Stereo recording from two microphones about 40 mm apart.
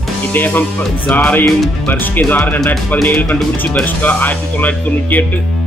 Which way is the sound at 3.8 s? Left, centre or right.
Left.